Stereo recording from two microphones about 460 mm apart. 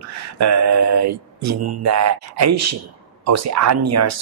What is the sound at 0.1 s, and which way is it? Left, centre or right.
Speech, right.